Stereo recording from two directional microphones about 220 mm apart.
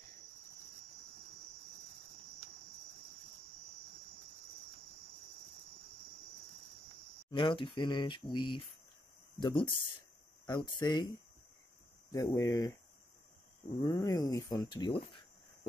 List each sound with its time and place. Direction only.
7.2 s speech: 20° left (ahead or behind)
12.1 s speech: 15° left (ahead or behind)
13.8 s speech: 15° left (ahead or behind)